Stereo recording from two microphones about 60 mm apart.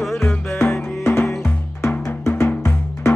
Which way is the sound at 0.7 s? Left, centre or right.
Left.